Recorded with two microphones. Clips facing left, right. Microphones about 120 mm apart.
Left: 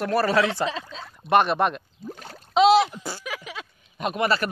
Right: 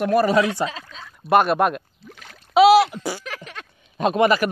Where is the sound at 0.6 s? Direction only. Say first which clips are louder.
Left 1 dB; 30° left (ahead or behind).